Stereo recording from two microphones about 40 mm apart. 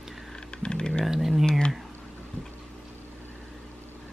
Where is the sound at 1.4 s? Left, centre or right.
Left.